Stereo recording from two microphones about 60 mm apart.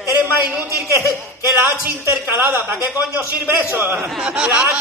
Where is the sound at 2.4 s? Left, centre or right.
Right.